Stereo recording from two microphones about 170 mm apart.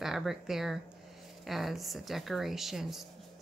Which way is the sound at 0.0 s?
Centre (ahead or behind).